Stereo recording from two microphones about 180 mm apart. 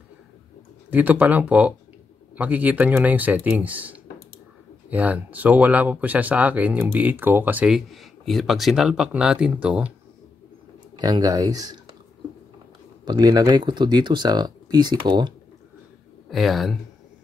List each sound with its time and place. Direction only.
0.8 s speech: 10° right (ahead or behind)
11.0 s speech: 20° right (ahead or behind)
13.0 s speech: 25° right (ahead or behind)
16.3 s speech: centre (ahead or behind)